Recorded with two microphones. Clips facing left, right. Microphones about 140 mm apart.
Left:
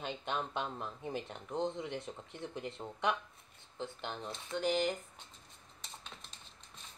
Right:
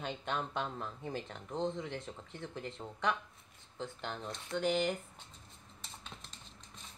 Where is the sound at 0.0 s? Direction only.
Centre (ahead or behind).